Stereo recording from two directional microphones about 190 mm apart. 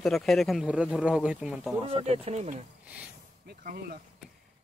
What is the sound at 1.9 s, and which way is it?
Speech, 30° right (ahead or behind).